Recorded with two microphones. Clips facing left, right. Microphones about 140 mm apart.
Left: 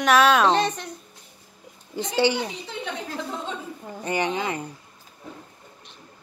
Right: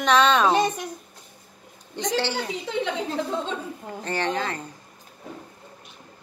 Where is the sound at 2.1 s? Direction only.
15° left (ahead or behind).